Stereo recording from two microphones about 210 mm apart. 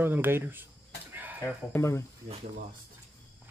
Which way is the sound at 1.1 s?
10° right (ahead or behind).